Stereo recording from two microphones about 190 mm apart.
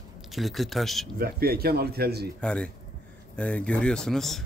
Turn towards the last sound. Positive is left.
turn(degrees=0)  # may be behind; listen again after turning